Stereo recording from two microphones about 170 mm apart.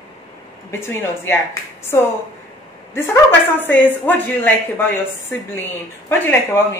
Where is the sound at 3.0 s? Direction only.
15° left (ahead or behind).